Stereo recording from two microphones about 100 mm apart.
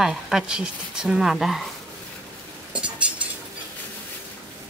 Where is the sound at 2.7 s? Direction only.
10° right (ahead or behind).